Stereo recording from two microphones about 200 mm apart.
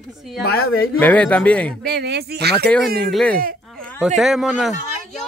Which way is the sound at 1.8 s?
55° right (ahead or behind).